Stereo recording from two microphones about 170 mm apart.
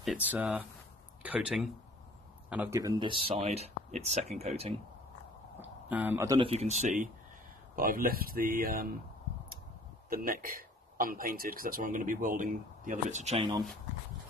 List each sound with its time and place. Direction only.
0.0 s speech: 5° right (ahead or behind); by 4.7 s 40° right (ahead or behind)
5.6 s a sound: 10° right (ahead or behind)
6.4 s speech: 40° right (ahead or behind); by 8.8 s 55° right (ahead or behind)
10.0 s speech: 60° right (ahead or behind); by 13.6 s 35° right (ahead or behind)